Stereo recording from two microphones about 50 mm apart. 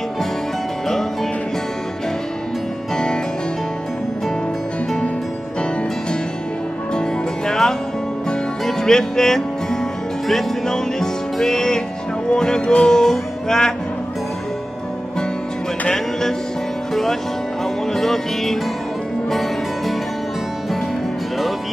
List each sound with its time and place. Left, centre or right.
6.9 s music: centre
15.9 s music: centre